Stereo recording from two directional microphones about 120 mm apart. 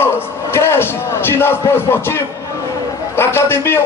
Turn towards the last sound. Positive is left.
turn(degrees=20)  # may be behind; listen again after turning